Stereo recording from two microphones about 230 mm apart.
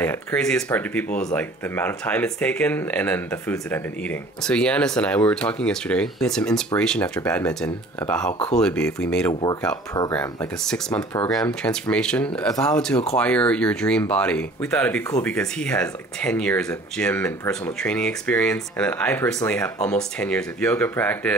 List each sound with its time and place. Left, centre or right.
0.0 s speech: centre
9.3 s speech: centre
10.1 s speech: centre